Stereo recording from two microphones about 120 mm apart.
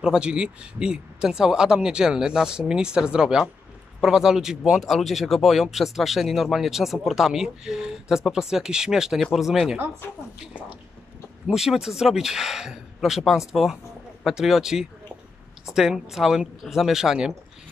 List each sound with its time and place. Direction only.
0.0 s speech: 5° right (ahead or behind)
10.0 s a woman's voice: 20° left (ahead or behind)
11.4 s speech: 5° right (ahead or behind)